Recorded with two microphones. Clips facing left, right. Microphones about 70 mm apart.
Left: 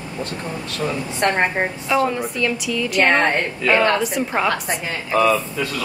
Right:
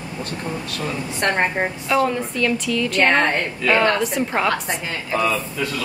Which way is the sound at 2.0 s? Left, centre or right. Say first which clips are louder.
Even; centre.